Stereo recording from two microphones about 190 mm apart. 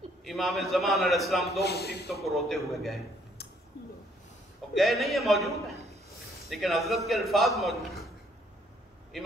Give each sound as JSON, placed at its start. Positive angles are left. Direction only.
{"t": 0.2, "sound": "a man's voice", "side_deg": 0}
{"t": 1.6, "sound": "a man's voice", "side_deg": 60}
{"t": 2.2, "sound": "a man's voice", "side_deg": 0}
{"t": 4.7, "sound": "a man's voice", "side_deg": 0}
{"t": 6.5, "sound": "a man's voice", "side_deg": 0}